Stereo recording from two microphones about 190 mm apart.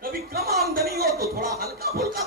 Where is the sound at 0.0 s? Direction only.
55° right (ahead or behind).